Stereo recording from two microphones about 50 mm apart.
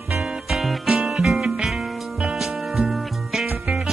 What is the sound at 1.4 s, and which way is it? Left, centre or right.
Music, centre.